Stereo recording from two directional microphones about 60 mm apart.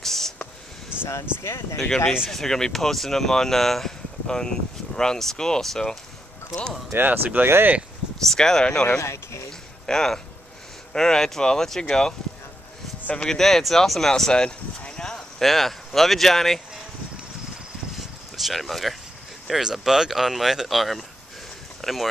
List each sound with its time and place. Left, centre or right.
0.0 s a sound: centre
0.9 s a sound: centre
1.4 s speech: left
2.2 s speech: centre
7.1 s speech: right
7.4 s speech: right
8.2 s speech: centre
9.0 s speech: left
9.8 s speech: centre
13.4 s speech: centre
17.9 s a sound: centre
19.4 s speech: centre
21.8 s a sound: centre